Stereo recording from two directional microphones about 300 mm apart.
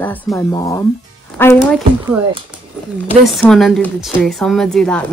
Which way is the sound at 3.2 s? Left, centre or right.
Centre.